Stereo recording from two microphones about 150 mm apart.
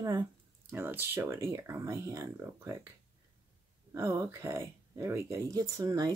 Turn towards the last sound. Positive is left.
turn(degrees=-25)  # may be behind; listen again after turning